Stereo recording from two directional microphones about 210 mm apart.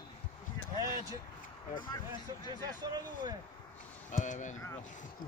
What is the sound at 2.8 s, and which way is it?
Speech, 20° right (ahead or behind).